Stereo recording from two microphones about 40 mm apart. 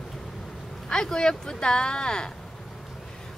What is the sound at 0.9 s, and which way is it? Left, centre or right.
Speech, centre.